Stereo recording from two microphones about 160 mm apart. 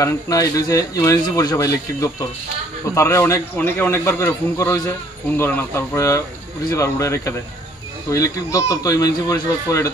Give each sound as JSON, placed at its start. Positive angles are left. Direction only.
{"t": 0.0, "sound": "speech", "side_deg": 20}